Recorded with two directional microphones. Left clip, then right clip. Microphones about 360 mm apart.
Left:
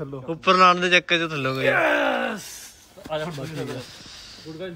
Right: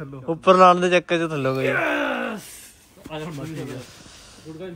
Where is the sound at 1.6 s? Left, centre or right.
Centre.